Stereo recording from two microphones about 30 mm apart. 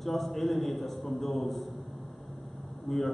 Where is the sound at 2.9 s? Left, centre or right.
Centre.